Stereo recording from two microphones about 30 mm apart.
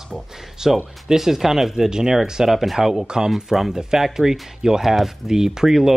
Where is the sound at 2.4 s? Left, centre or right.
Centre.